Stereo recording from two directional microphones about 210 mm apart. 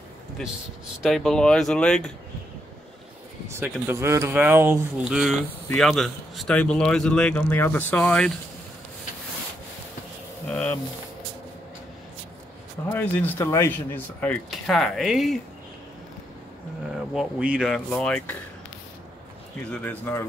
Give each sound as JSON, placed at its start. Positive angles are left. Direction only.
{"t": 1.0, "sound": "speech", "side_deg": 0}
{"t": 3.4, "sound": "speech", "side_deg": -10}
{"t": 10.5, "sound": "a sound", "side_deg": 5}
{"t": 12.9, "sound": "speech", "side_deg": 10}
{"t": 17.1, "sound": "speech", "side_deg": -5}
{"t": 19.7, "sound": "speech", "side_deg": 10}